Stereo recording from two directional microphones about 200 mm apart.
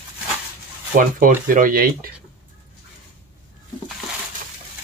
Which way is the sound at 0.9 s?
45° right (ahead or behind).